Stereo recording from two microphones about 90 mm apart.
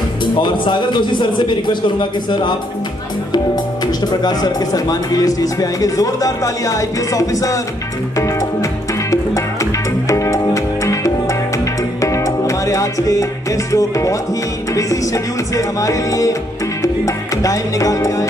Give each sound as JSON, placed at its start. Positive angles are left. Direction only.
{"t": 0.2, "sound": "a man's voice", "side_deg": 60}
{"t": 3.8, "sound": "speech", "side_deg": 50}
{"t": 8.2, "sound": "music", "side_deg": 35}
{"t": 10.0, "sound": "music", "side_deg": 35}
{"t": 14.7, "sound": "speech", "side_deg": 40}